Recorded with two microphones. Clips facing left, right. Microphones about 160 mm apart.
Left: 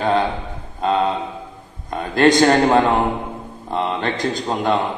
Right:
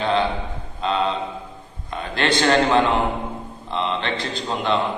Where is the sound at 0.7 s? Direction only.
45° left (ahead or behind).